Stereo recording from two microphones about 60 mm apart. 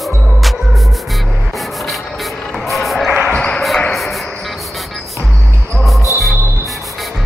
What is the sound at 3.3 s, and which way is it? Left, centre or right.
Basketball bounce, centre.